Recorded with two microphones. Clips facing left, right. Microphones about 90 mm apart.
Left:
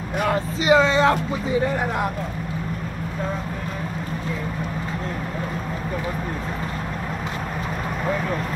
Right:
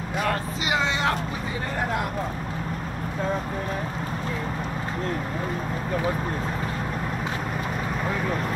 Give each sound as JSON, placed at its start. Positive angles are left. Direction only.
{"t": 0.7, "sound": "music", "side_deg": 35}